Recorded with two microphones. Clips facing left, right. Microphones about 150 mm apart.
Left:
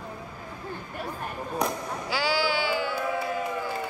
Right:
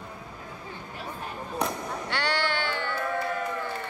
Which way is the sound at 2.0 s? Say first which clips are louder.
Left 3 dB; 5° left (ahead or behind).